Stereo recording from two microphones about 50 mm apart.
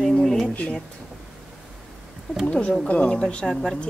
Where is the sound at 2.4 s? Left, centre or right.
Left.